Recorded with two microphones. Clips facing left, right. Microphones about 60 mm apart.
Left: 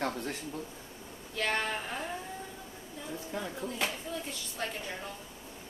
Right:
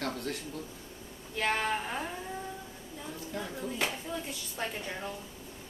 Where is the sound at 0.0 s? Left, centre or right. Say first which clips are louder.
Left 1 dB; left.